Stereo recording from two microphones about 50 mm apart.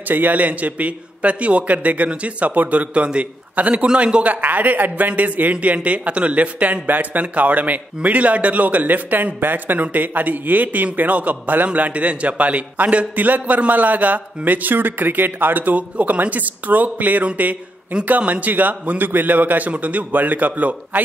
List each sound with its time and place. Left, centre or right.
0.1 s a man's voice: right